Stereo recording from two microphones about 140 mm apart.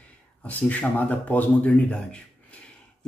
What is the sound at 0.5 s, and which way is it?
Speech, 10° left (ahead or behind).